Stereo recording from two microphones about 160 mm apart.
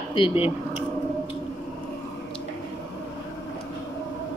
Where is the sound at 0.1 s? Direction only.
35° left (ahead or behind).